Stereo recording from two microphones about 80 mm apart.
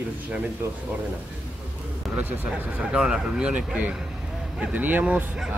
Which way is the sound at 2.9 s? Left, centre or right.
Centre.